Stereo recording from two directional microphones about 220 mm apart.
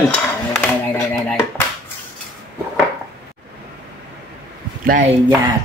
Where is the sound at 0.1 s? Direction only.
5° left (ahead or behind).